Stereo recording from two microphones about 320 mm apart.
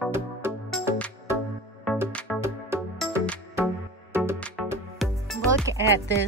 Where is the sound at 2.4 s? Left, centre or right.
Centre.